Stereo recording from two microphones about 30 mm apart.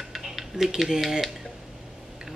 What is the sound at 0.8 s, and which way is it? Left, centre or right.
Speech, centre.